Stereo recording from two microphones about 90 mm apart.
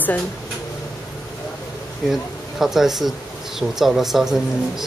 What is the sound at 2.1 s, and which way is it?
Speech, 5° right (ahead or behind).